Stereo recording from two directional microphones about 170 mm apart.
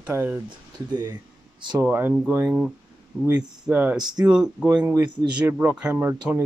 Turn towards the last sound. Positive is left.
turn(degrees=-10)  # may be behind; listen again after turning